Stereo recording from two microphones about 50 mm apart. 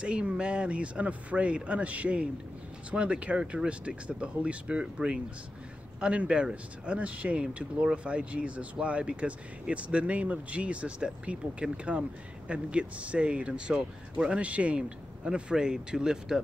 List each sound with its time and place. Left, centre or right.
0.0 s speech: right
14.4 s speech: right